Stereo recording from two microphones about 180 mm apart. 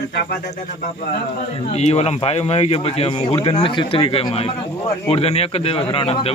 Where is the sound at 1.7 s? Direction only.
35° left (ahead or behind).